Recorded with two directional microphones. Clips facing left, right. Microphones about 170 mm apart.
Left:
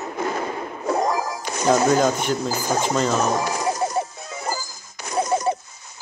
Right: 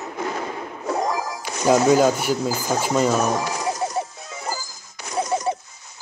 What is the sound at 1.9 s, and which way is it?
Speech, 5° right (ahead or behind).